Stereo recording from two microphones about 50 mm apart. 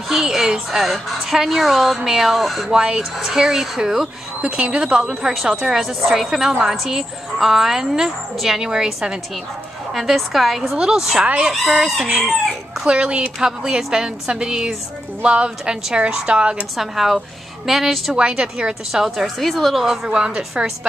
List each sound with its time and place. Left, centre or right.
0.1 s a woman's voice: centre
2.7 s speech: centre
4.4 s speech: centre
9.9 s a woman's voice: centre
11.2 s a woman's voice: right
11.6 s speech: centre
13.4 s a woman's voice: centre
16.7 s a woman's voice: centre
18.1 s speech: centre
18.9 s speech: centre